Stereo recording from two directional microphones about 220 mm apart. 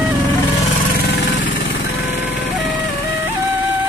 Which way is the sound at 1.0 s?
55° left (ahead or behind).